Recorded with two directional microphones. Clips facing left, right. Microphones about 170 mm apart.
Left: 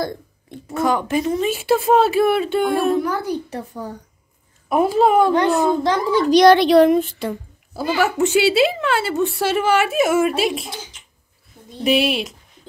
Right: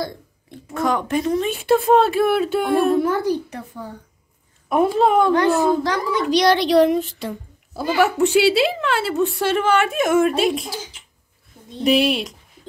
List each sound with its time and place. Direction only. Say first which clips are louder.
0.7 s a woman's voice: left 1 dB; centre (ahead or behind)
3.4 s speech: left 4 dB; 35° left (ahead or behind)
4.6 s a woman's voice: left 1 dB; 5° left (ahead or behind)
5.9 s a child's voice: left 4 dB; 30° left (ahead or behind)
6.3 s speech: left 4 dB; 50° left (ahead or behind)
7.7 s a woman's voice: right 1 dB; centre (ahead or behind)
11.8 s a woman's voice: right 1 dB; centre (ahead or behind)